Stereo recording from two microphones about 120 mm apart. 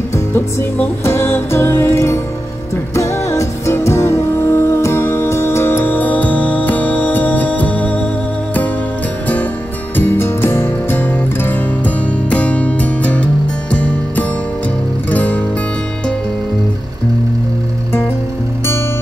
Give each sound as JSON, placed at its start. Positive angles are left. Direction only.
{"t": 0.3, "sound": "music", "side_deg": 20}
{"t": 9.9, "sound": "music", "side_deg": 15}